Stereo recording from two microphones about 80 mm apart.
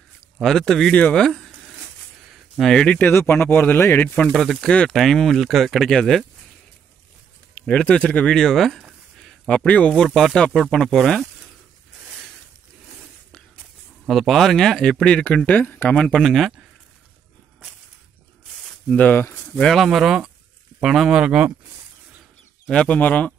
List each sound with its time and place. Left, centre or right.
0.4 s speech: centre
2.3 s a sound: centre
2.7 s speech: centre
3.1 s speech: left
4.1 s speech: centre
7.5 s speech: centre
9.2 s a sound: centre
9.7 s speech: centre
10.0 s speech: centre
14.0 s speech: centre
18.9 s speech: centre
19.6 s speech: centre
22.7 s speech: centre